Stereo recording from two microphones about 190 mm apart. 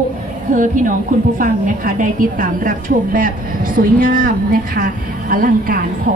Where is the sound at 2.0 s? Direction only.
45° right (ahead or behind).